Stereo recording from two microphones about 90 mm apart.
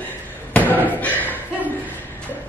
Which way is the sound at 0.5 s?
20° left (ahead or behind).